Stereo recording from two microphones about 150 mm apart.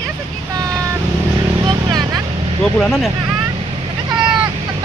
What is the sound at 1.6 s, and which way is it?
Vehicle, 25° right (ahead or behind).